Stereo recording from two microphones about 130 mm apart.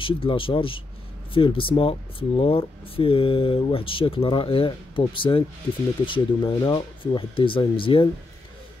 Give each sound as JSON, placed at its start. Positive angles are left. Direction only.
{"t": 0.0, "sound": "speech", "side_deg": 40}